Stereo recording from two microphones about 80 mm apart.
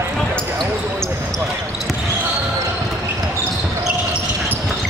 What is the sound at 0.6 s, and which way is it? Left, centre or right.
Basketball bounce, centre.